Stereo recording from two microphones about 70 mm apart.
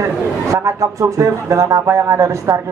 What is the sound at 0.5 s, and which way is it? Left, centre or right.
A man's voice, right.